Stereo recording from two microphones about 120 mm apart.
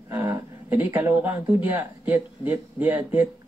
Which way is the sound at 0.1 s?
20° right (ahead or behind).